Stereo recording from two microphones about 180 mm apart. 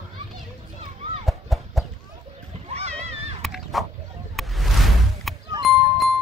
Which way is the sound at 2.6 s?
35° right (ahead or behind).